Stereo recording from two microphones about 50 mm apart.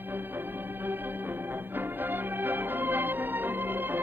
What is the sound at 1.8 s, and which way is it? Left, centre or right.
Music, right.